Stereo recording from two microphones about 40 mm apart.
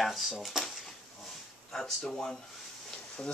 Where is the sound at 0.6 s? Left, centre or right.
Centre.